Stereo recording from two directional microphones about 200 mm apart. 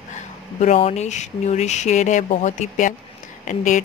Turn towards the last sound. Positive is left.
turn(degrees=40)  # may be behind; listen again after turning